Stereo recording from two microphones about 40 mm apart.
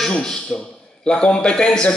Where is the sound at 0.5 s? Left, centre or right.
Left.